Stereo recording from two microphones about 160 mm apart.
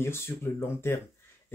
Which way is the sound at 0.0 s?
15° left (ahead or behind).